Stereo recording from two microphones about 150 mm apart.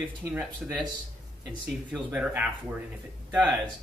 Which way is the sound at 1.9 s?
10° right (ahead or behind).